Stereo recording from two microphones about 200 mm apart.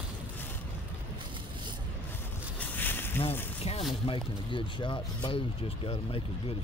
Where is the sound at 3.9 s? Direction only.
25° left (ahead or behind).